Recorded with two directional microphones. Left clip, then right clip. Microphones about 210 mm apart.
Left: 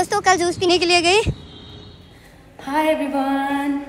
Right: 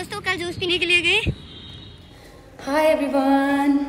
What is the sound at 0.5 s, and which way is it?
Speech, 60° left (ahead or behind).